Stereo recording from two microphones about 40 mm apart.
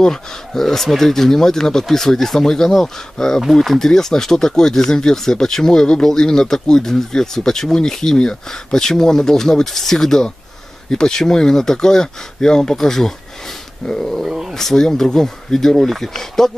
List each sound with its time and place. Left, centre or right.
0.0 s speech: centre
14.2 s speech: centre
14.5 s speech: centre